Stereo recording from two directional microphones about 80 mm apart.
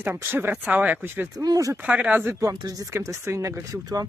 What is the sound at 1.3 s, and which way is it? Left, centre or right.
Speech, right.